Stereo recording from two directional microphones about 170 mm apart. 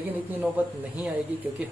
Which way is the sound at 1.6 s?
10° right (ahead or behind).